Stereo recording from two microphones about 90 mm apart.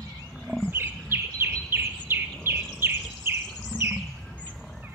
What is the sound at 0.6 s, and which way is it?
Bird, 25° right (ahead or behind).